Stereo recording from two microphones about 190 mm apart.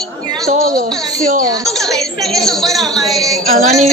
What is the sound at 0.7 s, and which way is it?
Speech, 45° right (ahead or behind).